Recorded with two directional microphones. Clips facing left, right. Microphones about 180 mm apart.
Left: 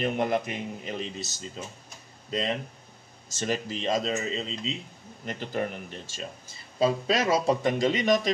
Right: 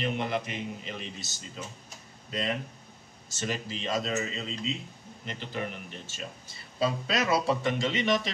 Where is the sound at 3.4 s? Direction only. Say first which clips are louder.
Left 5 dB; 45° left (ahead or behind).